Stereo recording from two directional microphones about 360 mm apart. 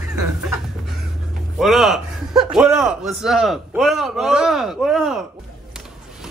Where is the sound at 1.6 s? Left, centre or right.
Centre.